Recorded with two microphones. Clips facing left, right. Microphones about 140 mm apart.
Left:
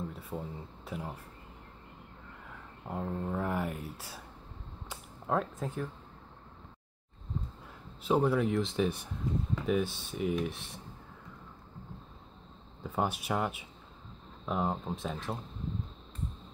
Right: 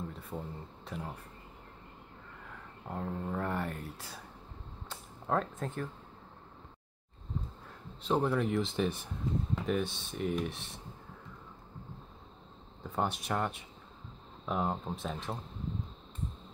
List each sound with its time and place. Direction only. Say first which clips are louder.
0.1 s speech: left 1 dB; 5° left (ahead or behind)
2.9 s speech: left 2 dB; 5° left (ahead or behind)
4.8 s a sound: left 1 dB; 5° left (ahead or behind)
8.0 s speech: left 2 dB; 5° left (ahead or behind)
12.8 s speech: left 1 dB; 5° left (ahead or behind)